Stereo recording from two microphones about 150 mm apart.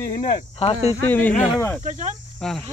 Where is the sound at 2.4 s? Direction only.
5° left (ahead or behind).